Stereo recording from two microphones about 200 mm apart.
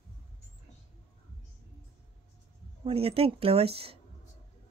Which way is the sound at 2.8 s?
30° right (ahead or behind).